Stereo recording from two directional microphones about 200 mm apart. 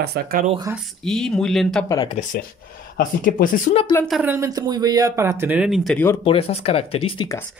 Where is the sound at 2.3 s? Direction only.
50° left (ahead or behind).